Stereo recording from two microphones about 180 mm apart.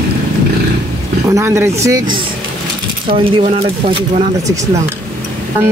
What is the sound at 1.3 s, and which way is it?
Speech, 15° right (ahead or behind).